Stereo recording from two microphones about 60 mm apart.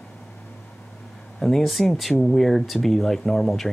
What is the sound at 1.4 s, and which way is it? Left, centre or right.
Speech, centre.